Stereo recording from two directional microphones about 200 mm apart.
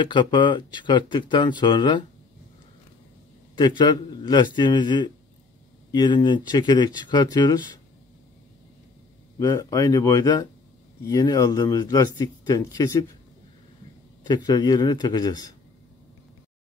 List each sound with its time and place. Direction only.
0.0 s speech: 25° left (ahead or behind)
3.5 s speech: 25° left (ahead or behind)
9.4 s speech: 20° left (ahead or behind)
14.2 s speech: 20° left (ahead or behind)